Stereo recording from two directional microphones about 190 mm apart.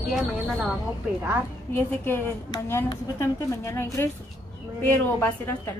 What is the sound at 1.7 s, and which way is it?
A woman's voice, 10° left (ahead or behind).